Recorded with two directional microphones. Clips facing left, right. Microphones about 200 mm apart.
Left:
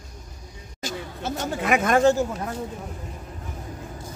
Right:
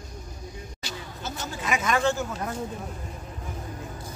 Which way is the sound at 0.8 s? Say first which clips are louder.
Left 8 dB; 50° left (ahead or behind).